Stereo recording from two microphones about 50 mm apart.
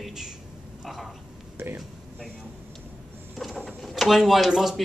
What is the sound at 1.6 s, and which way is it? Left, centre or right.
Speech, right.